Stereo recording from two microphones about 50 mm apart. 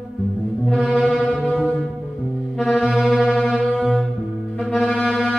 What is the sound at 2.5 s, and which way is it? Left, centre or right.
Music, centre.